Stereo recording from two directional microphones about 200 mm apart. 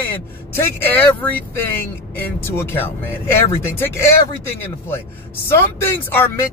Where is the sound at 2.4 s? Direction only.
10° left (ahead or behind).